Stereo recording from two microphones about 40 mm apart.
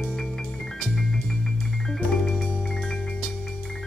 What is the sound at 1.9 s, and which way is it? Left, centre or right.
Music, centre.